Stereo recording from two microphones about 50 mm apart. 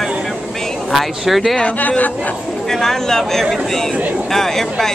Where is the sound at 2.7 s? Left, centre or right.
Centre.